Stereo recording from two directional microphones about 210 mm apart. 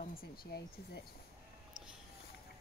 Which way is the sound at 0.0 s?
45° left (ahead or behind).